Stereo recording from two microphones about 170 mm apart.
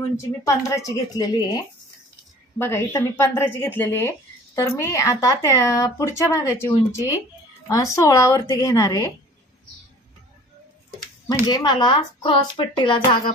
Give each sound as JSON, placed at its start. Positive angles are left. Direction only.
{"t": 0.4, "sound": "speech", "side_deg": 20}
{"t": 2.6, "sound": "speech", "side_deg": 15}
{"t": 11.4, "sound": "speech", "side_deg": 25}